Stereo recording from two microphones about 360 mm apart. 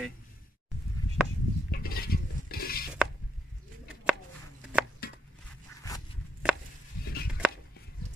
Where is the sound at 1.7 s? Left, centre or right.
Left.